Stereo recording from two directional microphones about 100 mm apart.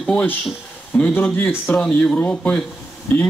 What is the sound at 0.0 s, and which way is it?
A man's voice, 10° left (ahead or behind).